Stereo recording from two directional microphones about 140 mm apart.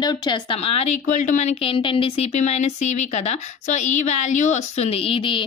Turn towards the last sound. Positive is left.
turn(degrees=40)  # may be behind; listen again after turning